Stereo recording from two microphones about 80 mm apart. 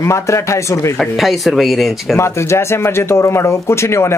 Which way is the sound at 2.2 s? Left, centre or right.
Left.